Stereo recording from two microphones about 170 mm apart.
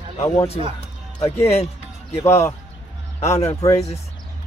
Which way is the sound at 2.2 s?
15° left (ahead or behind).